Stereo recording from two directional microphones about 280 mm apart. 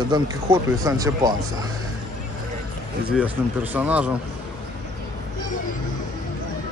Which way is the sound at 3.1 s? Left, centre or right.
Centre.